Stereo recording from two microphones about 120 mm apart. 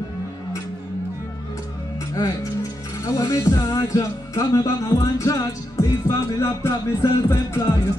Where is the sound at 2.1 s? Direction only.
30° left (ahead or behind).